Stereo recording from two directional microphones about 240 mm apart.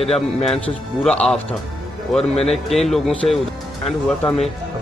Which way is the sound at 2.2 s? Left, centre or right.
Left.